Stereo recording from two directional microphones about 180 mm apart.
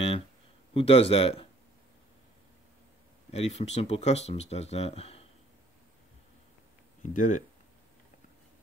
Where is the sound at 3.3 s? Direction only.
35° left (ahead or behind).